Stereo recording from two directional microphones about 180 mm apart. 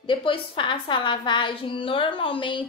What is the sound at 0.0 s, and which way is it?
A woman's voice, 30° left (ahead or behind).